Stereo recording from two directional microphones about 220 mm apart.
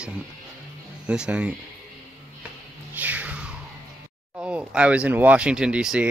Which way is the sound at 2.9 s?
10° right (ahead or behind).